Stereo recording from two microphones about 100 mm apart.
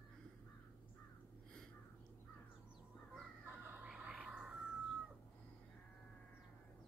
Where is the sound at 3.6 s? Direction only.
20° right (ahead or behind).